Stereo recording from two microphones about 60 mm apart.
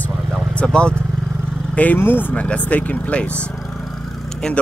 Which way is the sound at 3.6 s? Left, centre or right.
Centre.